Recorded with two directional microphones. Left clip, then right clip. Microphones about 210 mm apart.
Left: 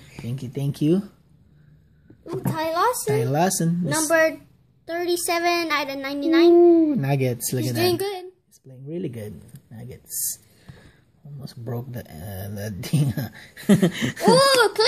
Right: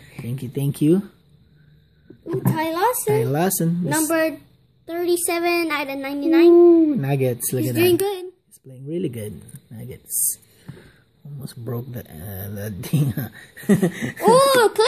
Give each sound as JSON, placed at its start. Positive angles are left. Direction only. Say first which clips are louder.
{"t": 0.3, "sound": "speech", "louder": "right 3 dB", "side_deg": -15}
{"t": 2.5, "sound": "a child's voice", "louder": "even", "side_deg": -20}
{"t": 3.1, "sound": "speech", "louder": "right 1 dB", "side_deg": -5}
{"t": 4.8, "sound": "speech", "louder": "right 2 dB", "side_deg": -15}
{"t": 7.7, "sound": "speech", "louder": "right 5 dB", "side_deg": -15}
{"t": 11.4, "sound": "speech", "louder": "right 2 dB", "side_deg": -15}
{"t": 13.7, "sound": "a sound", "louder": "even", "side_deg": 15}
{"t": 14.2, "sound": "speech", "louder": "right 2 dB", "side_deg": -15}